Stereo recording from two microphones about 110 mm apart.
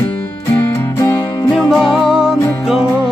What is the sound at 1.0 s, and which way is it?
Music, 30° left (ahead or behind).